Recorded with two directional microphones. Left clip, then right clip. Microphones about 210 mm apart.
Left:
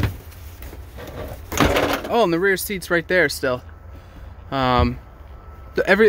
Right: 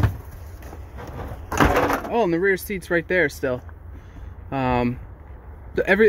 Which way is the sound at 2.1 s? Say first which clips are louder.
Left 4 dB; 15° left (ahead or behind).